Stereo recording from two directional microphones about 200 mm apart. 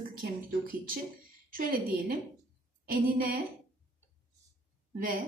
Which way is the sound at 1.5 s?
45° right (ahead or behind).